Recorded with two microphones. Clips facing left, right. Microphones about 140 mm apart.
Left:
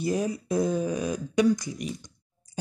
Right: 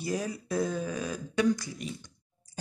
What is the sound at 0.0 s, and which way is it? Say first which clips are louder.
Speech: left 5 dB; 20° left (ahead or behind).